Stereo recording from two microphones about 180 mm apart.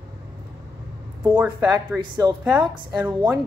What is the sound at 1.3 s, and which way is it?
A woman's voice, 15° right (ahead or behind).